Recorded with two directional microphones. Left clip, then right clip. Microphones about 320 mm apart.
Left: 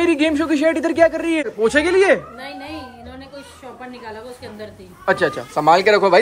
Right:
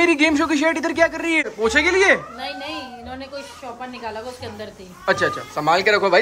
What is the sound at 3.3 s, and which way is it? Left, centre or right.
A woman's voice, centre.